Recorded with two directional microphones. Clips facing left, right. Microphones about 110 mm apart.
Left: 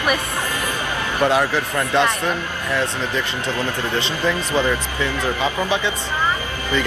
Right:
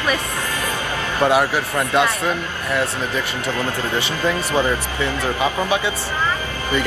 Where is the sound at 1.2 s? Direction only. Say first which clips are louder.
Right 1 dB; 15° right (ahead or behind).